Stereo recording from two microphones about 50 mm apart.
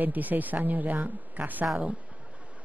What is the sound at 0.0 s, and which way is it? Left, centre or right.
Speech, right.